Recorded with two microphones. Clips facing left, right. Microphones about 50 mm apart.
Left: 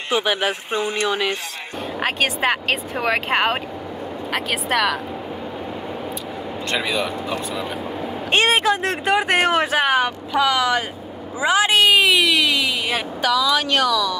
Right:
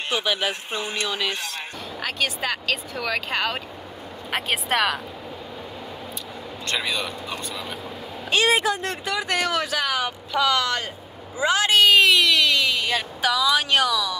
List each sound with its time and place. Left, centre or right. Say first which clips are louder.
0.1 s speech: left 5 dB; left
2.0 s speech: left 5 dB; left
6.7 s speech: left 4 dB; centre
8.3 s speech: left 3 dB; left
10.3 s speech: left 3 dB; centre
13.2 s speech: left 3 dB; centre